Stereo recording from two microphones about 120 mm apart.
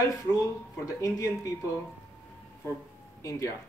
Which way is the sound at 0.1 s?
30° left (ahead or behind).